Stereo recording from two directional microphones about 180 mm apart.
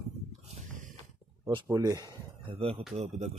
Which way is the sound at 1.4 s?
20° right (ahead or behind).